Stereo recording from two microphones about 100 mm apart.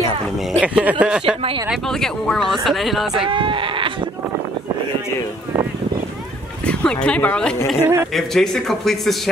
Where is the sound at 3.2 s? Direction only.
55° right (ahead or behind).